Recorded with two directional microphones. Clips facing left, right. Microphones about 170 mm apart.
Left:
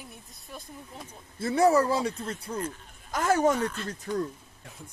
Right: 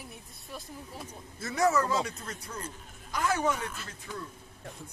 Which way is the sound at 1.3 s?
30° left (ahead or behind).